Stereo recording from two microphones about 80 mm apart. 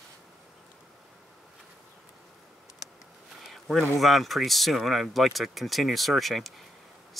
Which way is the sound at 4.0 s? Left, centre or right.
Centre.